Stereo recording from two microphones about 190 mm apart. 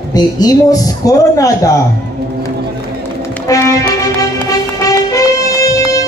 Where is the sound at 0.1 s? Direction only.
20° left (ahead or behind).